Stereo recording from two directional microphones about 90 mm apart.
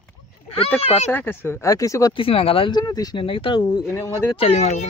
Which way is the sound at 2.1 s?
90° left.